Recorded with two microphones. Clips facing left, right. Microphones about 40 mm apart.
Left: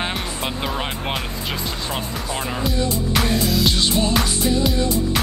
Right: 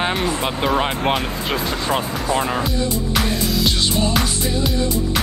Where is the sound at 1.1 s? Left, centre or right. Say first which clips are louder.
Right 6 dB; right.